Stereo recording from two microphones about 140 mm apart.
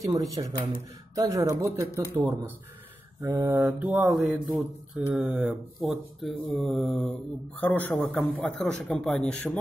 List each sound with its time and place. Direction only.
0.0 s speech: 25° right (ahead or behind)
2.1 s mantra: 15° right (ahead or behind)
4.1 s a man's voice: centre (ahead or behind)